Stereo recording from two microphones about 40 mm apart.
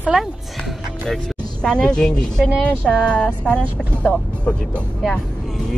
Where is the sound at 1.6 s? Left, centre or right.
Left.